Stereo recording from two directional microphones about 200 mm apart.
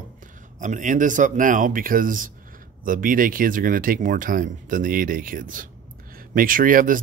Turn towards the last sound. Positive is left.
turn(degrees=-45)  # may be behind; listen again after turning